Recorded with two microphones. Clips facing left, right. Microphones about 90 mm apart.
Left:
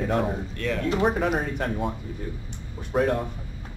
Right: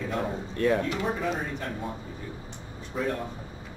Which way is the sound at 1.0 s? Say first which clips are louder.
Left 6 dB; 70° left (ahead or behind).